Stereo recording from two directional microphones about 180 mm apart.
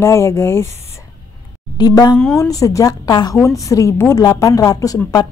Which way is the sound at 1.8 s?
20° left (ahead or behind).